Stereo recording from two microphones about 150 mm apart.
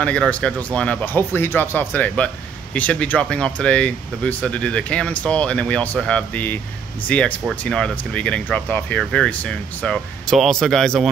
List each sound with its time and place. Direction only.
0.0 s speech: 5° left (ahead or behind)